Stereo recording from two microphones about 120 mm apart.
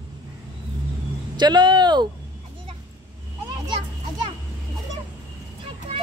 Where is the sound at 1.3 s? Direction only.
40° right (ahead or behind).